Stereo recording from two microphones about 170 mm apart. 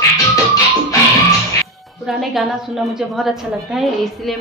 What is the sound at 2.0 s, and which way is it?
Speech, centre (ahead or behind).